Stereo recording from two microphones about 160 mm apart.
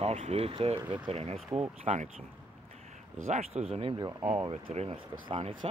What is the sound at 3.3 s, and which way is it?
Speech, 40° right (ahead or behind).